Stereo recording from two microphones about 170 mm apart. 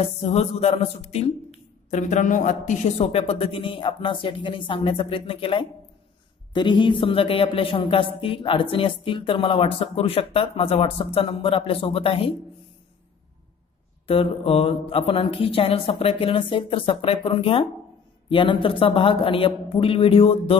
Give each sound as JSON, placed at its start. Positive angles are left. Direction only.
{"t": 0.0, "sound": "a man's voice", "side_deg": 35}
{"t": 14.0, "sound": "a man's voice", "side_deg": 35}